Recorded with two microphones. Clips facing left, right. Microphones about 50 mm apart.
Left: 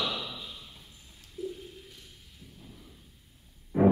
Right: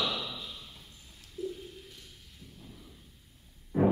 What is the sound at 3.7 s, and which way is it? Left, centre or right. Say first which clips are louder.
Music: left 3 dB; centre.